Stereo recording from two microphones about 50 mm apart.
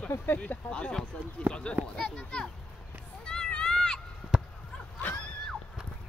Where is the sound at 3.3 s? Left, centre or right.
Centre.